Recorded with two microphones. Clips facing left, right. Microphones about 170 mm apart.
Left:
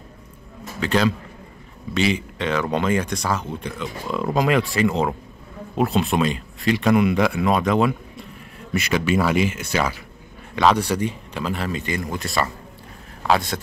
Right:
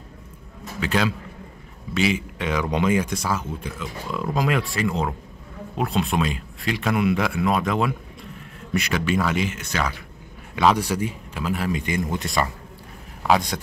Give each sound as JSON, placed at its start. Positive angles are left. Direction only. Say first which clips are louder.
{"t": 0.7, "sound": "speech", "louder": "left 3 dB", "side_deg": -5}
{"t": 10.5, "sound": "speech", "louder": "left 1 dB", "side_deg": -10}